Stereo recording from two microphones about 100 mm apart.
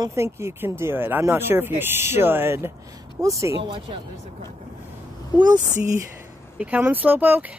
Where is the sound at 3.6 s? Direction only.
55° right (ahead or behind).